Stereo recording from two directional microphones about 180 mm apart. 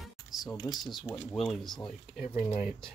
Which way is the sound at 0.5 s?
20° left (ahead or behind).